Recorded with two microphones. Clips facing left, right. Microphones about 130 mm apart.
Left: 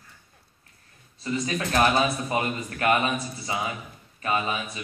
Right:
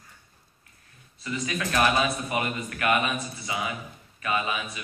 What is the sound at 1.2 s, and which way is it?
A man's voice, 30° left (ahead or behind).